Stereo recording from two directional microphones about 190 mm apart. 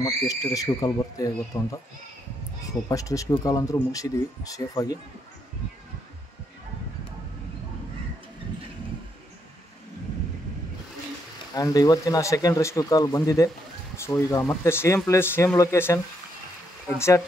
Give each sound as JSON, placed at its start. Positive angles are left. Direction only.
{"t": 0.0, "sound": "speech", "side_deg": 15}
{"t": 11.5, "sound": "speech", "side_deg": 20}